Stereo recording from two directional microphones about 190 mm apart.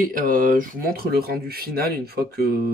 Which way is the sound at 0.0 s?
45° right (ahead or behind).